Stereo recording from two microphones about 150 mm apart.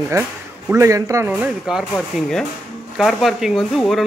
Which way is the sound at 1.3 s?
5° right (ahead or behind).